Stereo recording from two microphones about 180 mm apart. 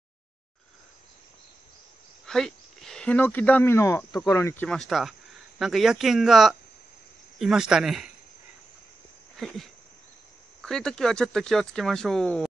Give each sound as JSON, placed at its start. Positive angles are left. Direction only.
{"t": 2.2, "sound": "speech", "side_deg": 0}
{"t": 4.6, "sound": "speech", "side_deg": 0}
{"t": 9.4, "sound": "a sound", "side_deg": 0}
{"t": 10.6, "sound": "speech", "side_deg": 5}